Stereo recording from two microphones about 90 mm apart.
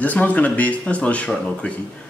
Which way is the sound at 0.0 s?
15° left (ahead or behind).